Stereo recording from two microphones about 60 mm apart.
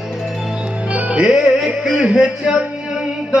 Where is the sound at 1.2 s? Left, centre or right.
Centre.